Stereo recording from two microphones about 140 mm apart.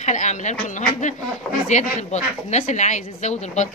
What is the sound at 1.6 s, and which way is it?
Speech, 55° left (ahead or behind).